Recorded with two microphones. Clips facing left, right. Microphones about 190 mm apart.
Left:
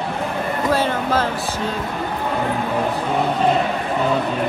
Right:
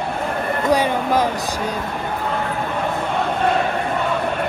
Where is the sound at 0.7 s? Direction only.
15° right (ahead or behind).